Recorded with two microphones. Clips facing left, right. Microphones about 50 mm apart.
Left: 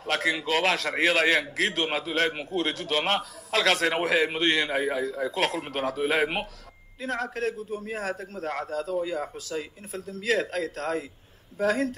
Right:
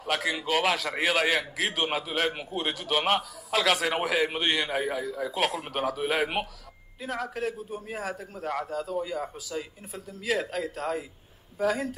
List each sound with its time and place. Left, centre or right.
0.0 s a man's voice: centre
3.8 s a man's voice: centre
5.3 s a man's voice: centre
7.0 s a man's voice: centre
9.1 s a man's voice: centre